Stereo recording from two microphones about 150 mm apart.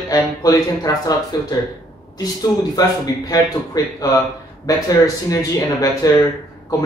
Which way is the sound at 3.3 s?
25° left (ahead or behind).